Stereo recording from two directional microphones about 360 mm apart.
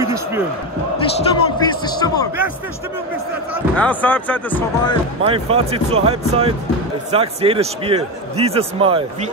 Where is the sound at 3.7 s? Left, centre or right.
Centre.